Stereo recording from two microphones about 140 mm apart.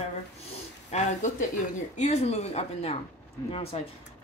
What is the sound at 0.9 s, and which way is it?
Speech, 60° left (ahead or behind).